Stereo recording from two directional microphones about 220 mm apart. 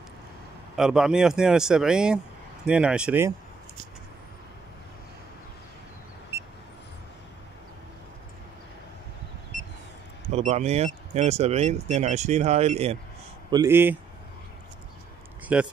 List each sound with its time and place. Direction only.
0.7 s speech: centre (ahead or behind)
10.3 s speech: 30° right (ahead or behind)
13.5 s speech: 15° right (ahead or behind)
15.5 s speech: 5° right (ahead or behind)